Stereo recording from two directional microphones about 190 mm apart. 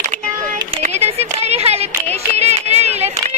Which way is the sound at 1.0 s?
35° right (ahead or behind).